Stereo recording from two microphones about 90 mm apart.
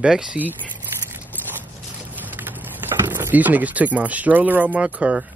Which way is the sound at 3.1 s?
20° right (ahead or behind).